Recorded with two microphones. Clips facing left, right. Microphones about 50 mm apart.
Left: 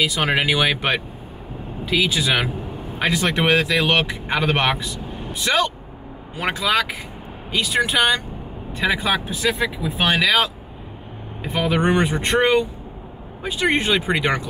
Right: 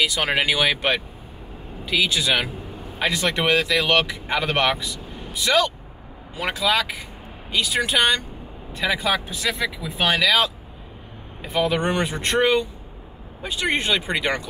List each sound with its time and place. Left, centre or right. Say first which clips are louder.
0.0 s speech: left 1 dB; centre; by 5.7 s left
6.5 s speech: left 1 dB; centre
8.7 s speech: left 2 dB; centre
9.8 s speech: left 1 dB; centre
11.6 s speech: left 4 dB; centre